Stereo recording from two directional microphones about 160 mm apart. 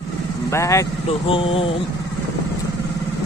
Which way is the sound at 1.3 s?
35° left (ahead or behind).